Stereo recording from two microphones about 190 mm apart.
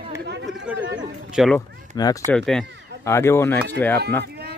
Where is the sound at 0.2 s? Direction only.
65° right (ahead or behind).